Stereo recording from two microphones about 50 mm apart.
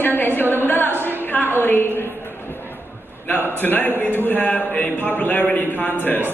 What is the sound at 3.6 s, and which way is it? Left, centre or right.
A man's voice, left.